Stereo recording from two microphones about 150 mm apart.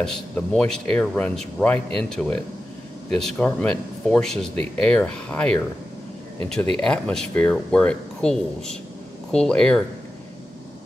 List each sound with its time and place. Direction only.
0.0 s speech: 5° left (ahead or behind)